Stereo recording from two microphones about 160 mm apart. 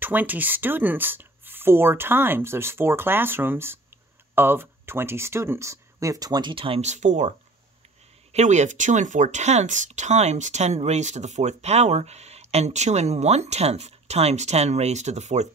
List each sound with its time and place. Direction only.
0.0 s speech: 10° right (ahead or behind); by 15.4 s 45° right (ahead or behind)